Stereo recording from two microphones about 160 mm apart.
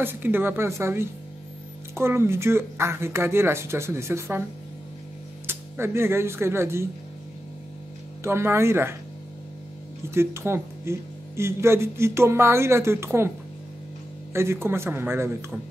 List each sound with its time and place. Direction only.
0.0 s speech: 15° right (ahead or behind)
5.5 s speech: 15° right (ahead or behind)
8.2 s speech: 15° right (ahead or behind)
10.1 s speech: 15° right (ahead or behind)
14.3 s speech: 15° right (ahead or behind)